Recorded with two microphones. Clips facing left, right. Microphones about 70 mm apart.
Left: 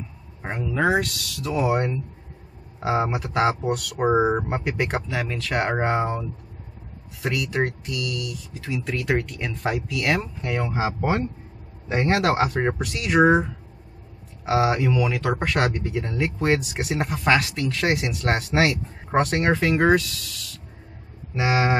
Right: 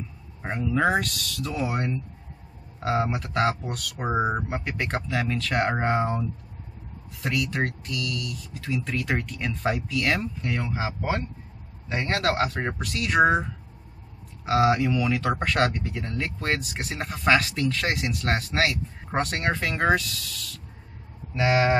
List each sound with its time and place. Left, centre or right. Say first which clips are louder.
0.4 s speech: even; centre
14.4 s speech: even; centre
21.4 s speech: even; centre